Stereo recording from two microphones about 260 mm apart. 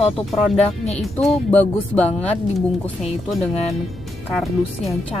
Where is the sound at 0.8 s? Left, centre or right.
Left.